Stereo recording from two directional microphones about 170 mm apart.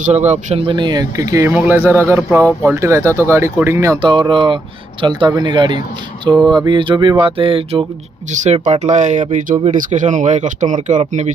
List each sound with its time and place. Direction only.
0.0 s speech: 40° right (ahead or behind)
0.7 s speech: 25° right (ahead or behind)
8.3 s speech: 45° right (ahead or behind)